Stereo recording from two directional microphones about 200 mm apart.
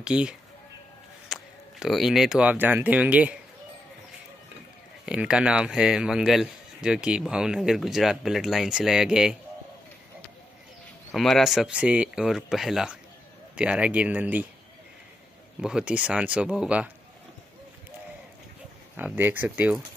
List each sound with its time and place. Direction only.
0.0 s speech: 5° right (ahead or behind)
5.0 s speech: 5° right (ahead or behind)
11.1 s speech: centre (ahead or behind)
15.6 s speech: 5° right (ahead or behind)
18.9 s speech: 10° right (ahead or behind)